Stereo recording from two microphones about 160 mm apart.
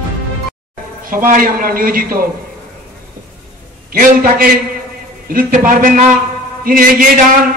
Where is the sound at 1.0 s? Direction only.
60° right (ahead or behind).